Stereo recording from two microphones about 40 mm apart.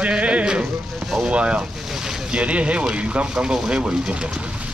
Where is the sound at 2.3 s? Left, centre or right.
Right.